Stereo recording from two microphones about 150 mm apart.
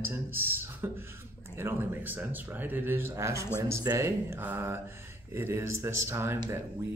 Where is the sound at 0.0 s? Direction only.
15° right (ahead or behind).